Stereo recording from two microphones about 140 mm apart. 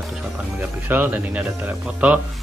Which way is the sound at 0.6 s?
15° right (ahead or behind).